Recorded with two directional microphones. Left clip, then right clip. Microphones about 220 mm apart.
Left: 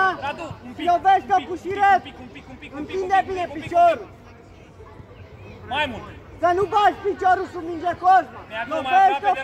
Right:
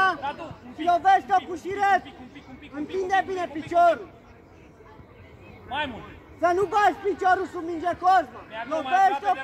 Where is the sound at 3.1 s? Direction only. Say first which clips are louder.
Left 5 dB; 40° right (ahead or behind).